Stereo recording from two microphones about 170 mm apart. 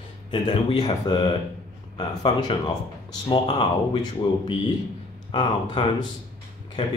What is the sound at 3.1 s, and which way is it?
Speech, 25° left (ahead or behind).